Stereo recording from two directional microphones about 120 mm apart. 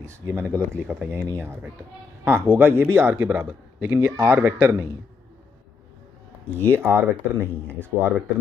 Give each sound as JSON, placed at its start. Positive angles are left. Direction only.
{"t": 0.0, "sound": "speech", "side_deg": -25}
{"t": 6.7, "sound": "speech", "side_deg": -20}